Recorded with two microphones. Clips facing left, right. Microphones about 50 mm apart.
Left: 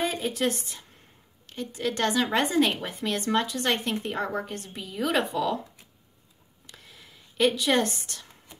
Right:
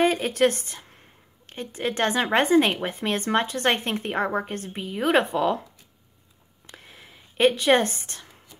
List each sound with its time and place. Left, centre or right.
0.0 s a woman's voice: right
1.5 s a woman's voice: right
6.7 s a sound: right